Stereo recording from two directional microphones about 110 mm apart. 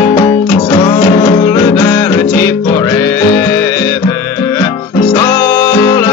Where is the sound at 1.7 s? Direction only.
20° left (ahead or behind).